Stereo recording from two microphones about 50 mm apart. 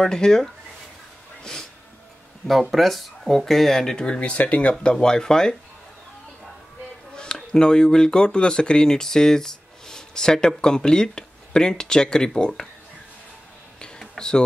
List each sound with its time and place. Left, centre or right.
0.0 s speech: centre
1.4 s a sound: centre
2.7 s speech: centre
3.9 s speech: centre
4.9 s speech: centre
7.2 s speech: centre
13.7 s a sound: centre